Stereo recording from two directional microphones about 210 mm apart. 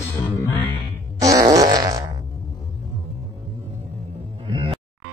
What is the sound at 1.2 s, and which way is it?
Fart, 15° right (ahead or behind).